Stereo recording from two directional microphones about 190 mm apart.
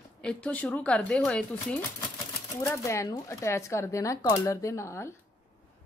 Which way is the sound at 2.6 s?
15° left (ahead or behind).